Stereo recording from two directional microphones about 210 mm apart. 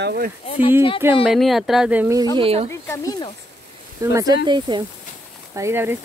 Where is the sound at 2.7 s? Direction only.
15° left (ahead or behind).